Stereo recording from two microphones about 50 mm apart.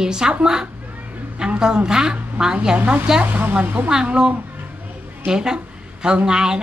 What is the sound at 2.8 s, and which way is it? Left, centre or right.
Speech, right.